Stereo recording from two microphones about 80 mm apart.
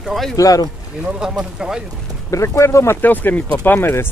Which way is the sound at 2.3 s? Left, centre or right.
Left.